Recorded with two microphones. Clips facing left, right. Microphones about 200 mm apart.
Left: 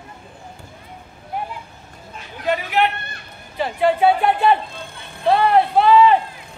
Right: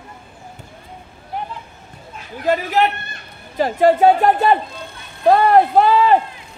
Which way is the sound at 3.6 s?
40° right (ahead or behind).